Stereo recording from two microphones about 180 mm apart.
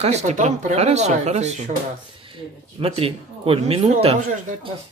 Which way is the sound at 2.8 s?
30° right (ahead or behind).